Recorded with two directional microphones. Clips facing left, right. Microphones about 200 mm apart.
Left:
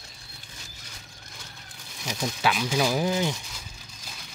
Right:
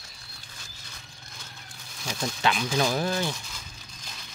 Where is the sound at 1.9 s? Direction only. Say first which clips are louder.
Left 1 dB; 15° left (ahead or behind).